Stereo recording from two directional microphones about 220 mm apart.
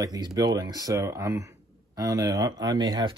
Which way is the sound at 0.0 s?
15° right (ahead or behind).